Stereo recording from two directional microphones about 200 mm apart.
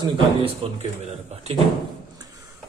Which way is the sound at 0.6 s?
30° right (ahead or behind).